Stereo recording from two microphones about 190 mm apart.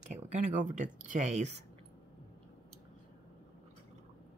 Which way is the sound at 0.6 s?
40° right (ahead or behind).